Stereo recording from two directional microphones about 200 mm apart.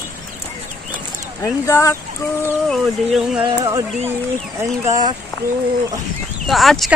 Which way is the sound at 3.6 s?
20° right (ahead or behind).